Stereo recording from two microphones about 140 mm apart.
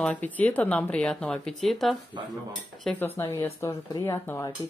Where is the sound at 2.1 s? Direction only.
30° right (ahead or behind).